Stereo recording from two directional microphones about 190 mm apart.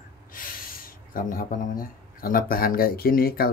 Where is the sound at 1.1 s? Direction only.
45° left (ahead or behind).